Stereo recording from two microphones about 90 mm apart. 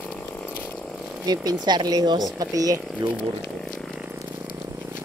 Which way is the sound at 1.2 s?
45° right (ahead or behind).